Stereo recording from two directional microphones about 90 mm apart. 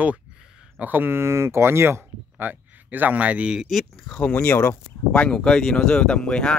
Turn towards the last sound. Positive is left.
turn(degrees=10)  # may be behind; listen again after turning